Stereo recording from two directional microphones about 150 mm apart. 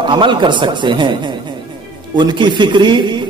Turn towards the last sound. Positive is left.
turn(degrees=-30)  # may be behind; listen again after turning